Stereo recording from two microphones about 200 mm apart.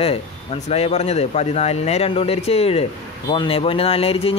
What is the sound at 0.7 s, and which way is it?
Speech, 30° left (ahead or behind).